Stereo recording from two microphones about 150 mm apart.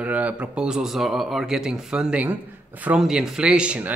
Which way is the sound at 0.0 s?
10° right (ahead or behind).